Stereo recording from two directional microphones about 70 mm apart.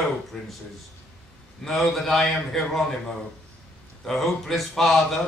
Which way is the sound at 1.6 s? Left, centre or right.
Centre.